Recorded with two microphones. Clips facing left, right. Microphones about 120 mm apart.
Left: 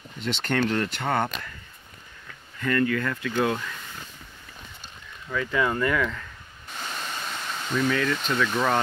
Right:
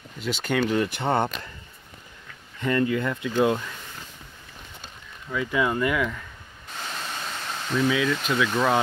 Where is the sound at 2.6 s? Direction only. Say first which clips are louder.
Right 1 dB; 20° right (ahead or behind).